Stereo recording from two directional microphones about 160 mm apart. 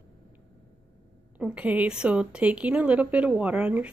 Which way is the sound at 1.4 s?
10° right (ahead or behind).